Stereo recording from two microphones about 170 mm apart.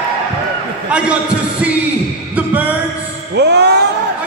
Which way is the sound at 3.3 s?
80° right.